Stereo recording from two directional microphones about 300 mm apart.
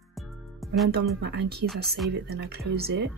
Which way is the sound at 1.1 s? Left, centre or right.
Right.